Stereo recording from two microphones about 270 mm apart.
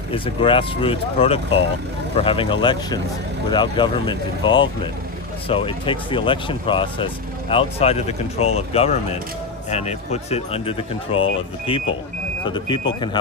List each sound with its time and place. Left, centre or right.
0.1 s speech: centre